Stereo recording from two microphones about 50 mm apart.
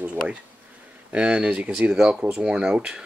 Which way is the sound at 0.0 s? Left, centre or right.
Right.